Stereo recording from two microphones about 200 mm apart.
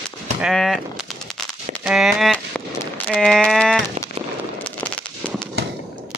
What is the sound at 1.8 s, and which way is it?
Speech, centre (ahead or behind).